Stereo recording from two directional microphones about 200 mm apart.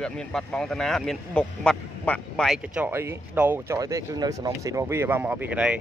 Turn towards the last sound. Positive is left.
turn(degrees=-5)  # may be behind; listen again after turning